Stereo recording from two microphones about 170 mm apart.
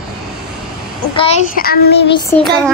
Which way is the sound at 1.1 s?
35° left (ahead or behind).